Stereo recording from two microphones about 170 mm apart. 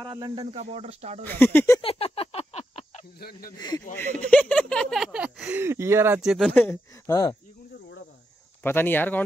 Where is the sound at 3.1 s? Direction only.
65° left (ahead or behind).